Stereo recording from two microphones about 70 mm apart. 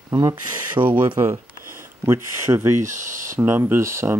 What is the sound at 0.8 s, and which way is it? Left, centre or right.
Speech, right.